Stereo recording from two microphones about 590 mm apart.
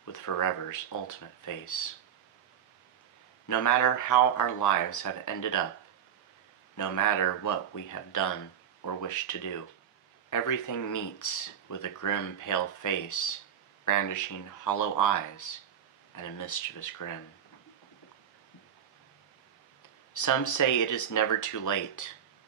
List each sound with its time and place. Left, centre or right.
0.0 s speech: left
3.4 s speech: left
6.8 s speech: left
20.2 s speech: left